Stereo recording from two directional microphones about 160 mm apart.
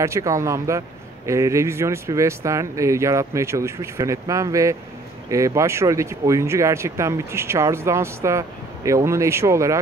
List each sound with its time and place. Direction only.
0.0 s a man's voice: 20° right (ahead or behind)